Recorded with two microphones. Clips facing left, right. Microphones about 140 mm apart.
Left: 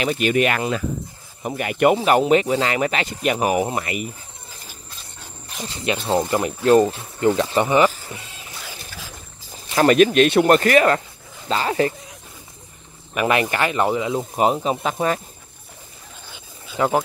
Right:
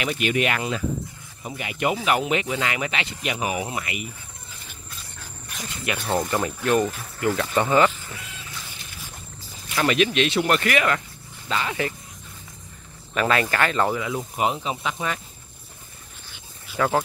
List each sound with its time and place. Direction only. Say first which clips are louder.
0.0 s speech: left 5 dB; 35° left (ahead or behind); by 2.0 s 55° left (ahead or behind)
2.0 s speech: left 7 dB; 35° left (ahead or behind)
5.2 s speech: left 4 dB; 25° left (ahead or behind)
8.1 s duck: left 2 dB; 30° left (ahead or behind)
8.6 s boat: left 5 dB; 90° left
9.8 s speech: left 7 dB; 45° left (ahead or behind)
13.1 s speech: left 2 dB; 15° left (ahead or behind)
14.3 s speech: left 6 dB; 40° left (ahead or behind)
16.7 s speech: left 3 dB; 20° left (ahead or behind)